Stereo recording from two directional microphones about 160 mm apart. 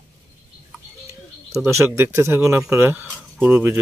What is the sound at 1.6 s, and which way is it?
Speech, 15° right (ahead or behind).